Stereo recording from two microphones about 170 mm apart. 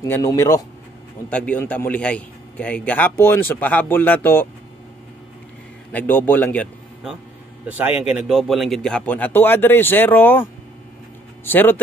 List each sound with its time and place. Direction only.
0.0 s speech: 20° left (ahead or behind)
1.3 s a man's voice: 5° left (ahead or behind)
5.9 s a man's voice: 10° left (ahead or behind)
7.6 s a man's voice: 10° right (ahead or behind); by 11.8 s 10° left (ahead or behind)